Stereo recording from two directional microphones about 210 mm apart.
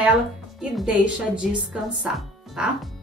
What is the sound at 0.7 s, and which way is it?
Speech, 5° right (ahead or behind).